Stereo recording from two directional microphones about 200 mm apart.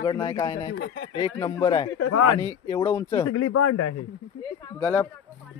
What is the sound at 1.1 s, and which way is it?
Speech, 25° left (ahead or behind).